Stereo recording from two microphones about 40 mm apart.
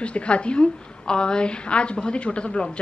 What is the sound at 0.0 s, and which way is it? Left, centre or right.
A woman's voice, left.